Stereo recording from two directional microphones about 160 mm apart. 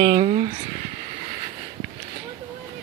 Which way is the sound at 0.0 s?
40° right (ahead or behind).